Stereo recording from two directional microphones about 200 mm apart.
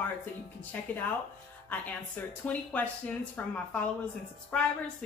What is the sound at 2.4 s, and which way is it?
Speech, 5° left (ahead or behind).